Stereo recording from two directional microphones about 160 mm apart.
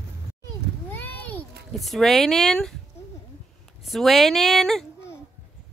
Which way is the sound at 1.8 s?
Centre (ahead or behind).